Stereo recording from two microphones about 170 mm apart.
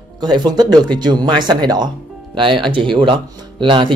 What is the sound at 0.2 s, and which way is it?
Speech, 25° right (ahead or behind).